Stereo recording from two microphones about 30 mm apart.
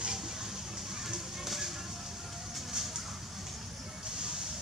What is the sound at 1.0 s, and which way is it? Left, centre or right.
Music, centre.